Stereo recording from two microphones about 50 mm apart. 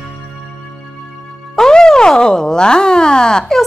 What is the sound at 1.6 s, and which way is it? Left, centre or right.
Speech, centre.